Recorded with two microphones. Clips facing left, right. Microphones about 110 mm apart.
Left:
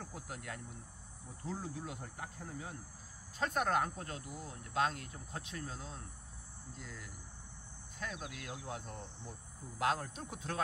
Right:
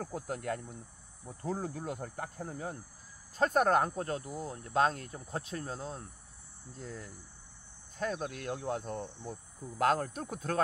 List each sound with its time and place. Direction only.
0.0 s cricket: 45° right (ahead or behind)
3.3 s speech: 45° right (ahead or behind)
8.0 s cricket: 45° right (ahead or behind)